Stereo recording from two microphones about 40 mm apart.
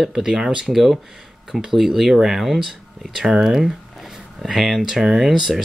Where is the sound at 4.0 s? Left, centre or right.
Centre.